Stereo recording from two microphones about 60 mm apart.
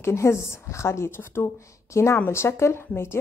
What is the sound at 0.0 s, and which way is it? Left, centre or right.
Speech, left.